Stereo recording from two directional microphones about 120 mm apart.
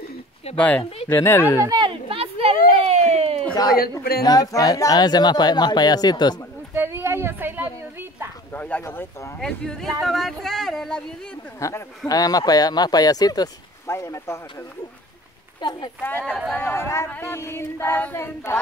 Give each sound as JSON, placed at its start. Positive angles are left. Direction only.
{"t": 0.6, "sound": "speech", "side_deg": 15}
{"t": 1.0, "sound": "female singing", "side_deg": 20}
{"t": 1.7, "sound": "a sound", "side_deg": -40}
{"t": 3.5, "sound": "speech", "side_deg": 30}
{"t": 6.7, "sound": "a sound", "side_deg": -20}
{"t": 8.5, "sound": "speech", "side_deg": 15}
{"t": 11.6, "sound": "female singing", "side_deg": 25}
{"t": 12.1, "sound": "speech", "side_deg": 30}
{"t": 15.6, "sound": "speech", "side_deg": 40}
{"t": 16.3, "sound": "speech", "side_deg": -5}
{"t": 16.5, "sound": "female singing", "side_deg": 20}